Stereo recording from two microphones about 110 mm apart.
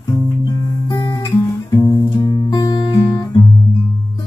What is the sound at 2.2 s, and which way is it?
Music, 40° left (ahead or behind).